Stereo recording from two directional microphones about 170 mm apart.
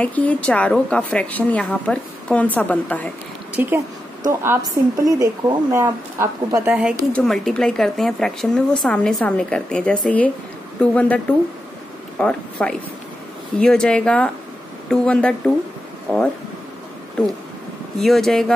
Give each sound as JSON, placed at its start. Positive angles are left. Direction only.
{"t": 0.0, "sound": "a woman's voice", "side_deg": 10}
{"t": 3.6, "sound": "speech", "side_deg": -10}
{"t": 6.7, "sound": "a woman's voice", "side_deg": -5}
{"t": 12.2, "sound": "a woman's voice", "side_deg": 5}
{"t": 17.9, "sound": "speech", "side_deg": 0}